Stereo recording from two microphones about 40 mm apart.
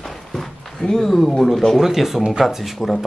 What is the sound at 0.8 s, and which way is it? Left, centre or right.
Speech, centre.